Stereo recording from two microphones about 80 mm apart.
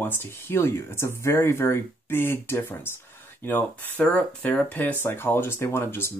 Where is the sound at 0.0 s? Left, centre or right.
Left.